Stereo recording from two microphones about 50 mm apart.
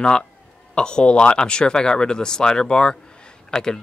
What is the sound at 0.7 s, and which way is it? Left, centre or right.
Speech, centre.